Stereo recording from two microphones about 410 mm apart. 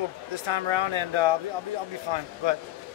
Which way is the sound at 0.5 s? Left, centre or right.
Right.